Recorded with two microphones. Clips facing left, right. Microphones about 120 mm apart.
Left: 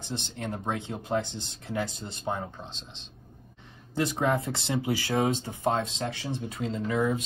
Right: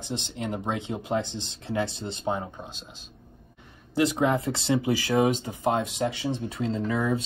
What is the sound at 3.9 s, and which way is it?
Speech, 15° right (ahead or behind).